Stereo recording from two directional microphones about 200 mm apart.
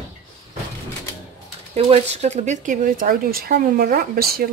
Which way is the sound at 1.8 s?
35° right (ahead or behind).